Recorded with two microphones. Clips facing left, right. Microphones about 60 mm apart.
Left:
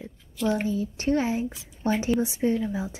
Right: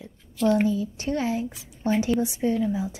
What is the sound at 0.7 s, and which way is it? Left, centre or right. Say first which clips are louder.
Speech: left 2 dB; left.